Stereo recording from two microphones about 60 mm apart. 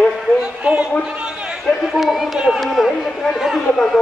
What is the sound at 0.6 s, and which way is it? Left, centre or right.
Speech, right.